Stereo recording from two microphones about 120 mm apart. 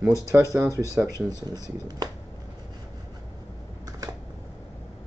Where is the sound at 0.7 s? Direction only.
25° left (ahead or behind).